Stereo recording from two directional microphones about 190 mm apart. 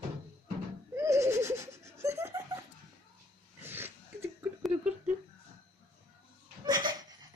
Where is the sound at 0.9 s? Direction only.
15° right (ahead or behind).